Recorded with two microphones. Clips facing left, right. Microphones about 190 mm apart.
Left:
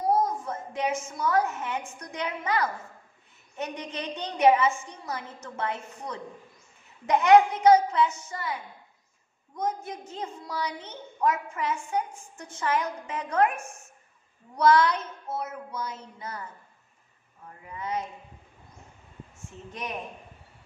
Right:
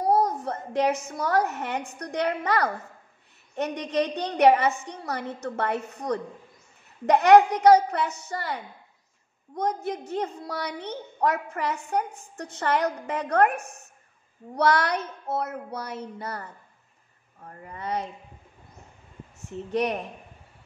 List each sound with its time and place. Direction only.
0.2 s a woman's voice: 65° right (ahead or behind)
9.6 s a woman's voice: 70° right (ahead or behind)
17.6 s a woman's voice: 65° right (ahead or behind)
19.7 s a woman's voice: 70° right (ahead or behind)